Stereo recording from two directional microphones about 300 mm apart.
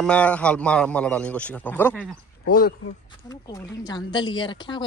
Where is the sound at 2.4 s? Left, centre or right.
Left.